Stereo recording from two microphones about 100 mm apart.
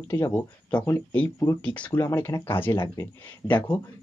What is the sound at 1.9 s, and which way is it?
Speech, 25° left (ahead or behind).